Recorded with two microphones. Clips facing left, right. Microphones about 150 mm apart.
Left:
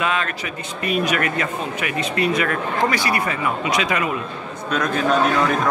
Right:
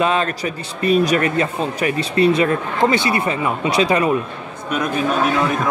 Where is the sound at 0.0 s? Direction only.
30° right (ahead or behind).